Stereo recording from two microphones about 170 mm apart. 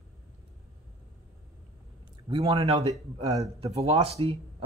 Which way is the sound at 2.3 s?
35° right (ahead or behind).